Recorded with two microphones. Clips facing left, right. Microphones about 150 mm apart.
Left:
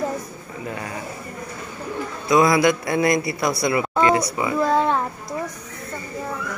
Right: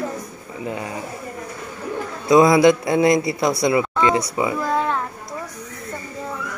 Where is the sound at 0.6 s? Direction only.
20° right (ahead or behind).